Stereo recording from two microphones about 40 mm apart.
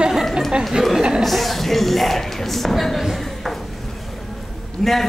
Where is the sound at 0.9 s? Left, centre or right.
Centre.